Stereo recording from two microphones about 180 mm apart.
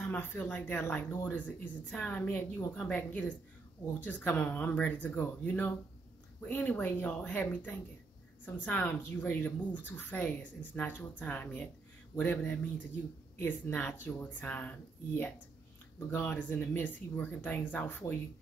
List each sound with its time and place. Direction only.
0.0 s speech: 10° left (ahead or behind)